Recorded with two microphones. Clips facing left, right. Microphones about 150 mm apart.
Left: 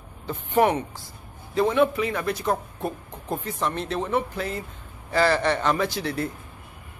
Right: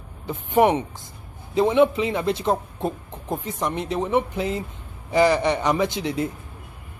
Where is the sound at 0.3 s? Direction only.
20° right (ahead or behind).